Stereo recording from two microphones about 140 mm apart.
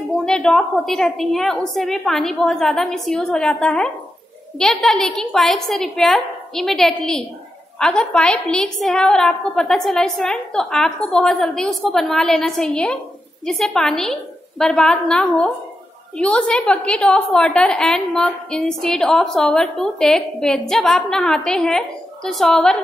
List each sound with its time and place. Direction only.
0.2 s a woman's voice: 5° left (ahead or behind)